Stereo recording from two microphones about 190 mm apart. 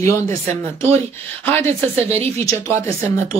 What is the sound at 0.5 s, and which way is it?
Speech, 35° right (ahead or behind).